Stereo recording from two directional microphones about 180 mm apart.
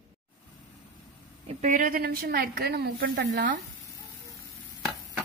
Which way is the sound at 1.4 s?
45° right (ahead or behind).